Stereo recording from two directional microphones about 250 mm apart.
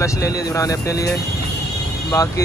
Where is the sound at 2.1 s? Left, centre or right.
Centre.